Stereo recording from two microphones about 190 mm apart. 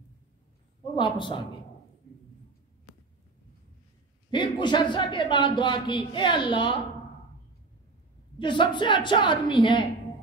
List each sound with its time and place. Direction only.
0.9 s a man's voice: 25° left (ahead or behind)
4.3 s a man's voice: 25° left (ahead or behind)
8.4 s a man's voice: 25° left (ahead or behind)